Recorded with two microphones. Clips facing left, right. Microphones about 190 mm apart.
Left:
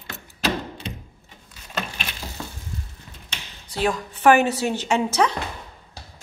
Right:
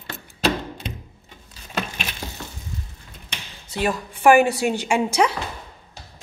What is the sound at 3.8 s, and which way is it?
A woman's voice, 10° right (ahead or behind).